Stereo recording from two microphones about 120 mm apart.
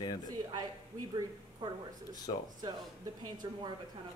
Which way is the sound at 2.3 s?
45° left (ahead or behind).